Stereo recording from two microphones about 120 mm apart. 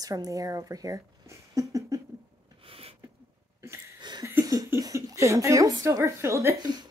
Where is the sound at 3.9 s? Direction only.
35° right (ahead or behind).